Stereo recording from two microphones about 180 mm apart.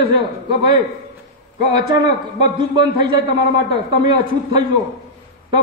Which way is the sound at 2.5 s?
25° right (ahead or behind).